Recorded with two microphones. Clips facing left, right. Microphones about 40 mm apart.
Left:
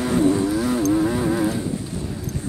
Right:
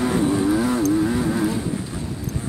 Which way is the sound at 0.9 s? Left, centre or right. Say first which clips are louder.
Even; centre.